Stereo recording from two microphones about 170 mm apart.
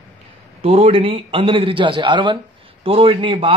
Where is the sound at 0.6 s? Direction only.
35° right (ahead or behind).